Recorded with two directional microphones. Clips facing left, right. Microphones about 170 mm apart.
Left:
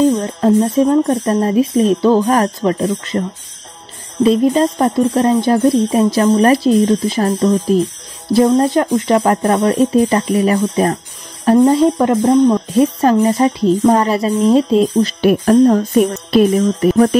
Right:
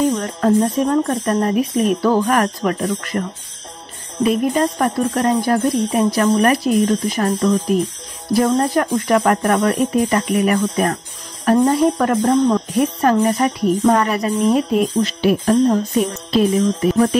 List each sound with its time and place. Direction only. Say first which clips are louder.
0.2 s speech: left 3 dB; 25° left (ahead or behind)
12.7 s speech: left 4 dB; 25° left (ahead or behind)
15.7 s music: left 5 dB; 60° left (ahead or behind)